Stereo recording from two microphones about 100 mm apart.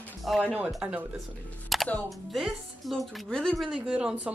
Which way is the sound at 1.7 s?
Centre (ahead or behind).